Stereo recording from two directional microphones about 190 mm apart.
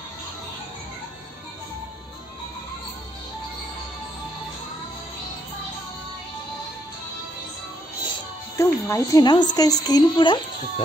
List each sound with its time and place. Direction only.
8.5 s a woman's voice: 15° left (ahead or behind)